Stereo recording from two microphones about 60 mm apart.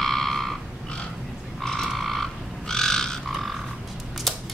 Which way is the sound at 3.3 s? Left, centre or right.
Centre.